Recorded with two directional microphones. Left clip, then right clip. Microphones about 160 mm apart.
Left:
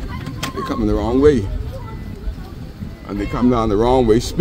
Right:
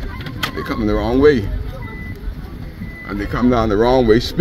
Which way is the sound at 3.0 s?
10° left (ahead or behind).